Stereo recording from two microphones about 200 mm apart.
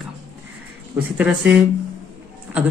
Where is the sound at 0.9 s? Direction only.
5° right (ahead or behind).